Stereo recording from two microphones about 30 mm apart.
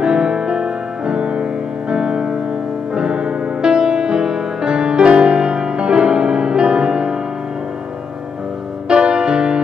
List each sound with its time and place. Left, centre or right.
0.0 s music: right
8.8 s music: right